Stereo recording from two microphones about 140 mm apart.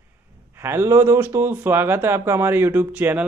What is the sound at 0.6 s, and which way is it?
Speech, 15° right (ahead or behind).